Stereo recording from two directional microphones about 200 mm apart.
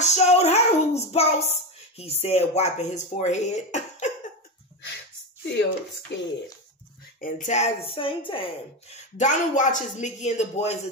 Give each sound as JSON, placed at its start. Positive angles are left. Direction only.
{"t": 0.0, "sound": "child singing", "side_deg": 35}
{"t": 6.1, "sound": "speech", "side_deg": 60}
{"t": 7.2, "sound": "a woman's voice", "side_deg": 40}
{"t": 8.9, "sound": "a woman's voice", "side_deg": 35}